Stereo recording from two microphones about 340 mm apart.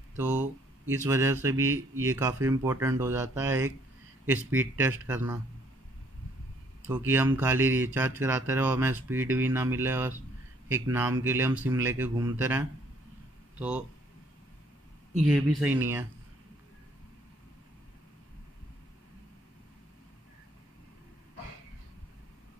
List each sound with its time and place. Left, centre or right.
0.2 s speech: centre
6.9 s speech: centre
15.2 s speech: centre